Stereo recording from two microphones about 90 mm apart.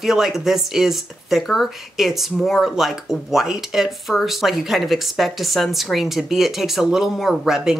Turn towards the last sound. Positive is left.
turn(degrees=-5)  # may be behind; listen again after turning